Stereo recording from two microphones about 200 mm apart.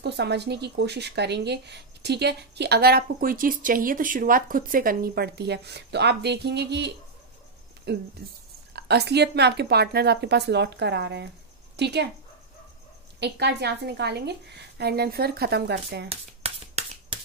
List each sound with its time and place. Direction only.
0.0 s speech: 55° right (ahead or behind)
13.2 s speech: 55° right (ahead or behind)
16.1 s a sound: 30° right (ahead or behind)